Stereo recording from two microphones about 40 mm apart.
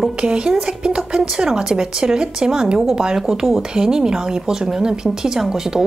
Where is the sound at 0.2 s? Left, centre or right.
Right.